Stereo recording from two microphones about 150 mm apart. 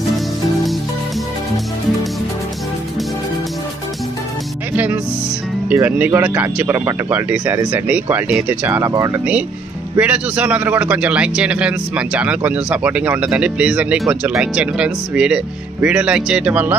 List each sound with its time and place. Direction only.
5.7 s a man's voice: 10° right (ahead or behind)
9.9 s a man's voice: 10° right (ahead or behind)